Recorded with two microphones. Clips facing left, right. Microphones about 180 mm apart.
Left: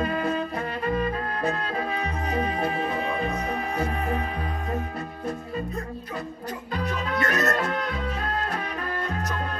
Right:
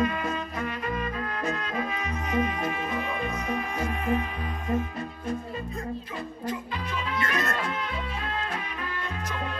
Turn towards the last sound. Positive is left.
turn(degrees=40)  # may be behind; listen again after turning